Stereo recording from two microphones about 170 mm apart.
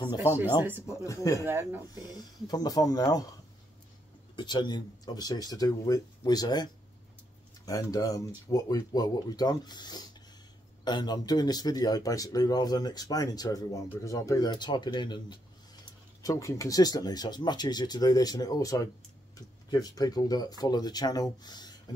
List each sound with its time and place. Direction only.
0.7 s speech: 10° right (ahead or behind)
1.0 s speech: 20° left (ahead or behind)
1.4 s speech: 15° right (ahead or behind)
2.4 s speech: 25° left (ahead or behind)
4.4 s speech: 25° left (ahead or behind)